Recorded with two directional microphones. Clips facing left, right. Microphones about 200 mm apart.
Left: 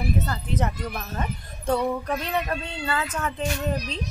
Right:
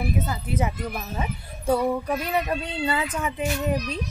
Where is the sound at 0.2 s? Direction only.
10° right (ahead or behind).